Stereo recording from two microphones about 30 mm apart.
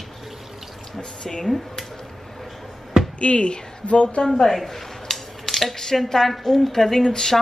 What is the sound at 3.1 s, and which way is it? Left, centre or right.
A woman's voice, left.